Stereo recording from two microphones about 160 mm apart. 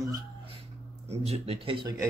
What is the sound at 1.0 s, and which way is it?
Speech, 40° right (ahead or behind).